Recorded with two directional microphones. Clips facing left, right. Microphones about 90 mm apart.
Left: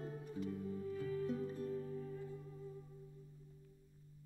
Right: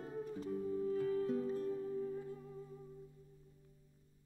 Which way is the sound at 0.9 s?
35° right (ahead or behind).